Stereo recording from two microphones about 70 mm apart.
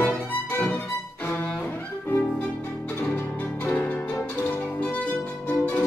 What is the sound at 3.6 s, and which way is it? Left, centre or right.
Music, left.